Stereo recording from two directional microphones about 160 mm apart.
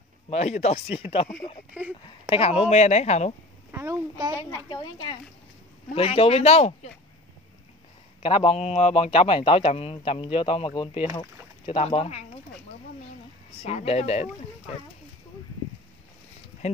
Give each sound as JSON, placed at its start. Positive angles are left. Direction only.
{"t": 0.3, "sound": "a man's voice", "side_deg": 45}
{"t": 1.7, "sound": "speech", "side_deg": -10}
{"t": 2.2, "sound": "speech", "side_deg": 35}
{"t": 3.7, "sound": "a child's voice", "side_deg": -20}
{"t": 4.6, "sound": "a woman's voice", "side_deg": 30}
{"t": 8.2, "sound": "a man's voice", "side_deg": 35}
{"t": 13.6, "sound": "a man's voice", "side_deg": 40}